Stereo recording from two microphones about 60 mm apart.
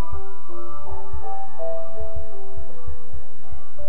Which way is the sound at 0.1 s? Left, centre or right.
Centre.